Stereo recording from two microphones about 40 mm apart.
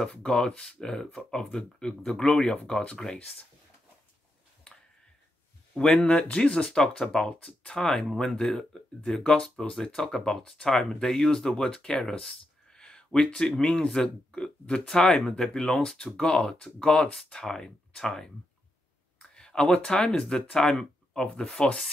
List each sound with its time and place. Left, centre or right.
0.0 s speech: centre
5.9 s speech: left
6.5 s speech: centre
19.1 s a sound: centre
19.7 s speech: left